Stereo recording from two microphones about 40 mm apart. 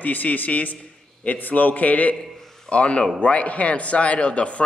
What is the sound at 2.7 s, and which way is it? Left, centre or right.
Speech, left.